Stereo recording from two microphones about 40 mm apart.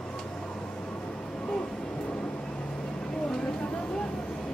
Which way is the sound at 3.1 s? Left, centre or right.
Centre.